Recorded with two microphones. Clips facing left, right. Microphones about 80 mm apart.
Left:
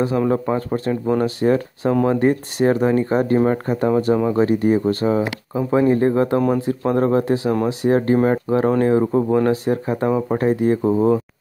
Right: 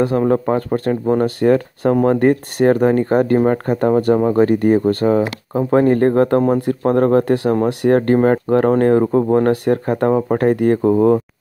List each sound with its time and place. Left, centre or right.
0.3 s speech: right